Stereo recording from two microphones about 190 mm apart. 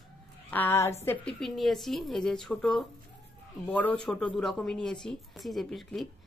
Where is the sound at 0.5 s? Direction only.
10° left (ahead or behind).